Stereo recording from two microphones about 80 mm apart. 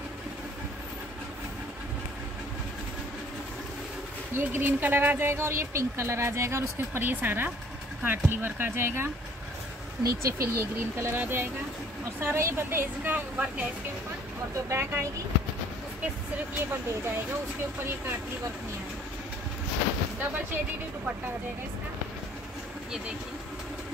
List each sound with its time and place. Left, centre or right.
4.3 s speech: right
11.1 s speech: right
14.5 s speech: right